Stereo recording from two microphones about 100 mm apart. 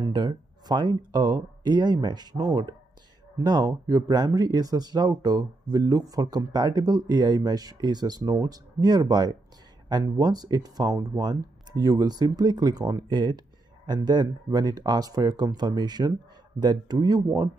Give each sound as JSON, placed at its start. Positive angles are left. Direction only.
{"t": 0.0, "sound": "speech", "side_deg": -45}